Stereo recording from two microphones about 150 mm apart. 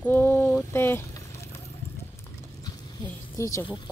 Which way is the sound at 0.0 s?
15° left (ahead or behind).